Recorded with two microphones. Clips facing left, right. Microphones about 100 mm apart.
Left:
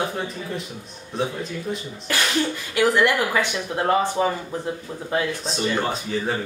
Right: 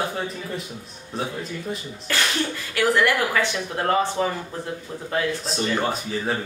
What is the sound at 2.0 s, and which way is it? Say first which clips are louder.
Speech: left 2 dB; 15° left (ahead or behind).